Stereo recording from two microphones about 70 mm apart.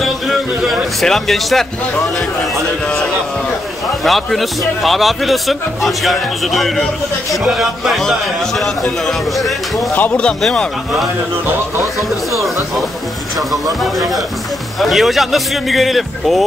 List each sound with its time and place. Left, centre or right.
0.0 s a sound: centre
4.0 s a man's voice: centre
9.9 s speech: left
13.5 s a man's voice: centre